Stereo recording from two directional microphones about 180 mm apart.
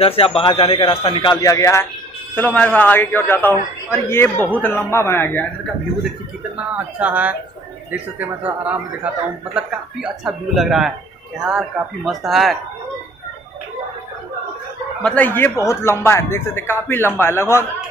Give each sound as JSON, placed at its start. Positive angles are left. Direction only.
{"t": 0.0, "sound": "a man's voice", "side_deg": 30}
{"t": 6.5, "sound": "a man's voice", "side_deg": -10}
{"t": 15.0, "sound": "a man's voice", "side_deg": 10}